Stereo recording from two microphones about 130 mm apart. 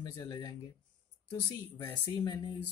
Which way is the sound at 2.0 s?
35° left (ahead or behind).